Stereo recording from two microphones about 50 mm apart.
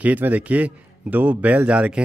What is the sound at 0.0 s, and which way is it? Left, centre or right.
A man's voice, right.